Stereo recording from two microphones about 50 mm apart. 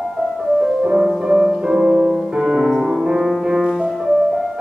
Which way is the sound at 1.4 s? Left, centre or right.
Centre.